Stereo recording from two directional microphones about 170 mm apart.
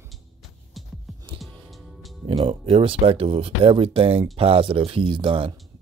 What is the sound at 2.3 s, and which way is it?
Speech, 35° right (ahead or behind).